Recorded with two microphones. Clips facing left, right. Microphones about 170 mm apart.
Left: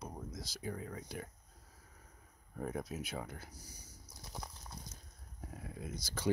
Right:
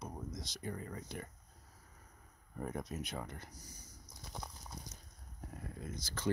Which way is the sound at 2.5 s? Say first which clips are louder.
Left 1 dB; centre (ahead or behind).